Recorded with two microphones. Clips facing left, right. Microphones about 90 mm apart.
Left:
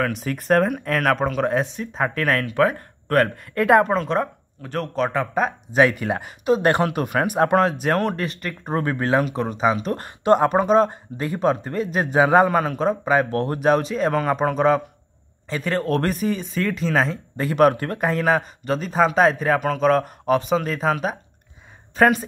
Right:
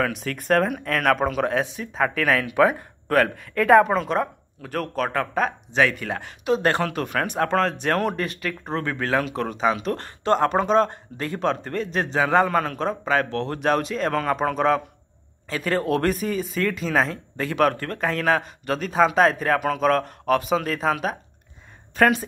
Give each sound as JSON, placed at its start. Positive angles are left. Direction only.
{"t": 0.0, "sound": "a man's voice", "side_deg": 0}
{"t": 5.8, "sound": "a man's voice", "side_deg": 20}
{"t": 13.6, "sound": "a man's voice", "side_deg": 5}